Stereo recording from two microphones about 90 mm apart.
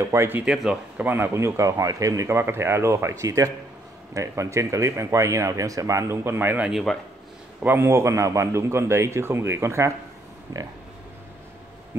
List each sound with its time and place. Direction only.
0.0 s speech: 30° right (ahead or behind)
0.5 s speech: 15° right (ahead or behind)
6.7 s speech: 5° left (ahead or behind)
7.6 s speech: 25° right (ahead or behind)
10.5 s pig: 40° right (ahead or behind)